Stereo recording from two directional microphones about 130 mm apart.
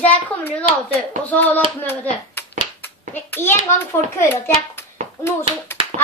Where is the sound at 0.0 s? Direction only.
15° left (ahead or behind).